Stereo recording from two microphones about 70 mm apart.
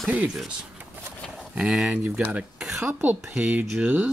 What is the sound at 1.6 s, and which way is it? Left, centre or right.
Speech, centre.